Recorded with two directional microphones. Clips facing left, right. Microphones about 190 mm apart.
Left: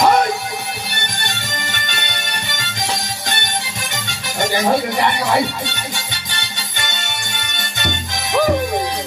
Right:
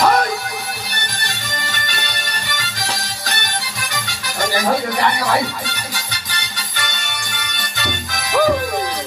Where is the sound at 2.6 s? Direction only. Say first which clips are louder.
Left 4 dB; 25° left (ahead or behind).